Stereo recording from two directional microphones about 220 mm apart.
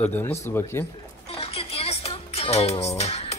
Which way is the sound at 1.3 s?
25° left (ahead or behind).